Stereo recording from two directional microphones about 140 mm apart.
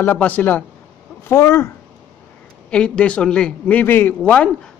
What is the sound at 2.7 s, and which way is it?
A man's voice, 5° left (ahead or behind).